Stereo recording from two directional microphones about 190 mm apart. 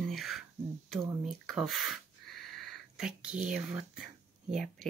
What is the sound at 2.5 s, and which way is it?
Speech, centre (ahead or behind).